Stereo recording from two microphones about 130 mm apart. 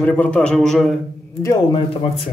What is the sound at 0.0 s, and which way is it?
Speech, 10° left (ahead or behind).